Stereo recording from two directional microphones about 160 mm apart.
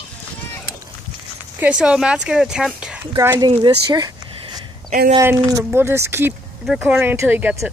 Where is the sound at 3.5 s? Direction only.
30° right (ahead or behind).